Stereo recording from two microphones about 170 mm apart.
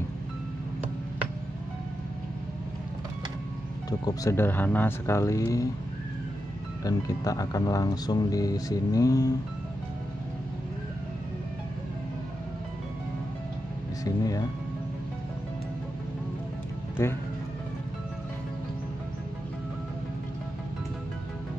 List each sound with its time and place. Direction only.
4.0 s speech: 20° left (ahead or behind)
6.8 s speech: 20° left (ahead or behind)
14.0 s speech: 20° left (ahead or behind)
17.0 s speech: 15° left (ahead or behind)